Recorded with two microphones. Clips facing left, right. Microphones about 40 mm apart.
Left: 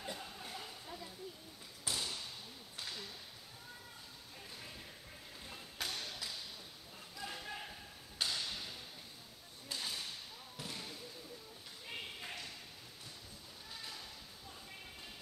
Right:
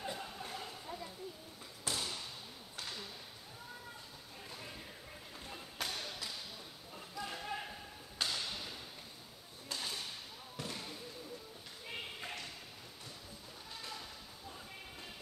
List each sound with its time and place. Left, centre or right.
0.0 s a sound: centre
5.5 s thump: centre
7.2 s basketball bounce: centre
8.2 s thump: centre
9.7 s whip: centre
10.6 s basketball bounce: centre
11.9 s a sound: centre
13.7 s sheep: centre